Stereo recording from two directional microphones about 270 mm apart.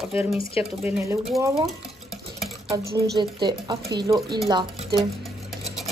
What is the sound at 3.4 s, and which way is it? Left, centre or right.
Speech, centre.